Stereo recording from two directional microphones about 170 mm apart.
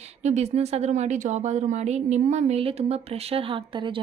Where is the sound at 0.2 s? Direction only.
40° right (ahead or behind).